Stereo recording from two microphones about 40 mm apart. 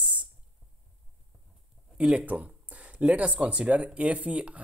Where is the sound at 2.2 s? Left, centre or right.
Right.